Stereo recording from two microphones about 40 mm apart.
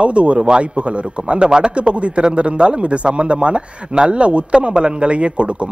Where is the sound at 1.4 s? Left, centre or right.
Centre.